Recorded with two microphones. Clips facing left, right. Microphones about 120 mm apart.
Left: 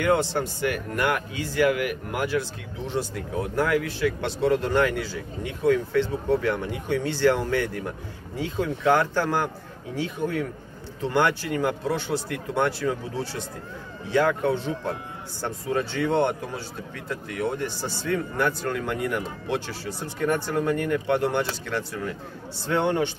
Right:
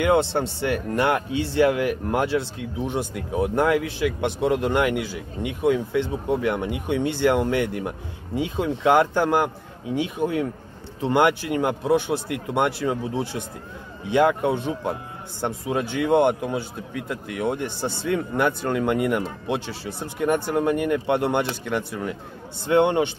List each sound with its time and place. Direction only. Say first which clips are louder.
0.0 s speech: right 3 dB; 20° right (ahead or behind)